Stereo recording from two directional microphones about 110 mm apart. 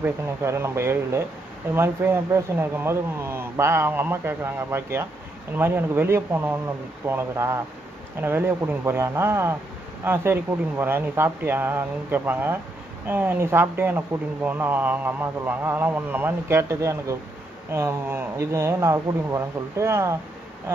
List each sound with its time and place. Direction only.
0.0 s speech: 25° right (ahead or behind)